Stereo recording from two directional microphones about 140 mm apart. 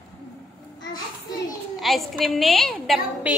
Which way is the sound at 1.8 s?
Centre (ahead or behind).